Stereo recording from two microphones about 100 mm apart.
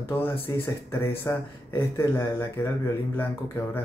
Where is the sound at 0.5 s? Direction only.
30° left (ahead or behind).